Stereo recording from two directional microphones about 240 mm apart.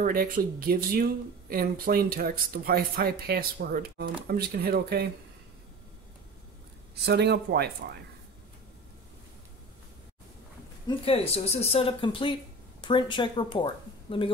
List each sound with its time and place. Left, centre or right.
0.0 s speech: right
7.1 s speech: right
11.1 s a woman's voice: left